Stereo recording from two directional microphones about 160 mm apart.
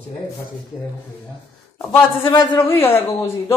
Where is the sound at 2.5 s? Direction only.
15° left (ahead or behind).